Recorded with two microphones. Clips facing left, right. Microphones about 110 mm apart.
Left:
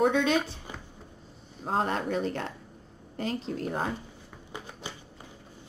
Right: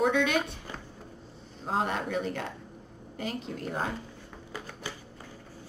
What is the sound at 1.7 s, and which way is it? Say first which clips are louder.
A woman's voice: left 1 dB; 35° left (ahead or behind).